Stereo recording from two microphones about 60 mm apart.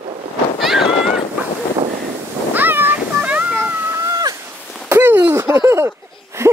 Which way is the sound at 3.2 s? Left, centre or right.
Right.